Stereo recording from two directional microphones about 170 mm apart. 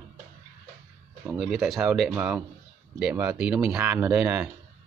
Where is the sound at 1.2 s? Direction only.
Centre (ahead or behind).